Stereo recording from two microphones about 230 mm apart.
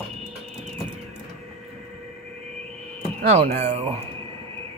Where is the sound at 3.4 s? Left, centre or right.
Right.